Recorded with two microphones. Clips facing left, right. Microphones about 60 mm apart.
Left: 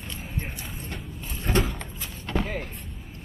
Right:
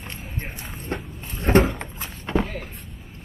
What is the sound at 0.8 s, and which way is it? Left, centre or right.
Dog, right.